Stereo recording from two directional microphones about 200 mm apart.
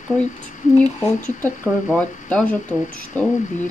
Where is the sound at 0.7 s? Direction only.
10° left (ahead or behind).